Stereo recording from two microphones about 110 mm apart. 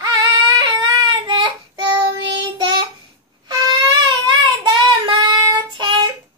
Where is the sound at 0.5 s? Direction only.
45° right (ahead or behind).